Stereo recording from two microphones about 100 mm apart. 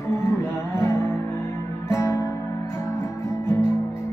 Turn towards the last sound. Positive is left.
turn(degrees=25)  # may be behind; listen again after turning